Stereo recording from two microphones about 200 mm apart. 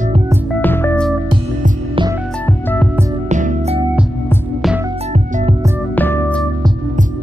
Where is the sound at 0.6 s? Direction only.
10° left (ahead or behind).